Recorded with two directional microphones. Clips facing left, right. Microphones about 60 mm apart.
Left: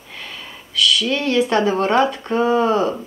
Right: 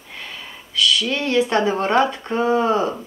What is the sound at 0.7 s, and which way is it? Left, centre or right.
Speech, right.